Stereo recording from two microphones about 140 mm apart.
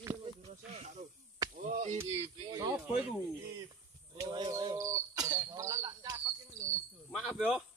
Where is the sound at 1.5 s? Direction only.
60° right (ahead or behind).